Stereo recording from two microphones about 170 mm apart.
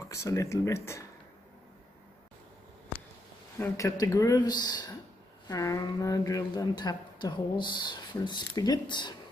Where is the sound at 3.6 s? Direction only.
20° left (ahead or behind).